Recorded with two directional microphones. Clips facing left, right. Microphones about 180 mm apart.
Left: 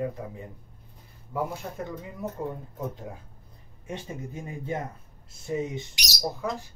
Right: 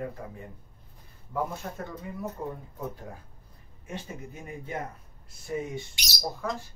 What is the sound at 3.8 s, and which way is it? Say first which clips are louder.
Speech: left 3 dB; 30° left (ahead or behind).